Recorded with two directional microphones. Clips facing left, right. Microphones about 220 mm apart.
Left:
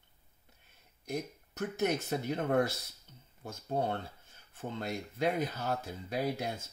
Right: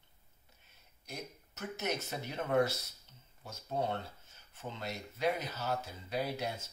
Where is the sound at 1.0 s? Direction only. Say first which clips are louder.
Left 9 dB; 55° left (ahead or behind).